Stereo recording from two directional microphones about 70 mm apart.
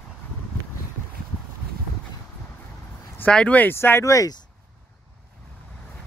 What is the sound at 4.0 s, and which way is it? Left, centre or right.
Speech, left.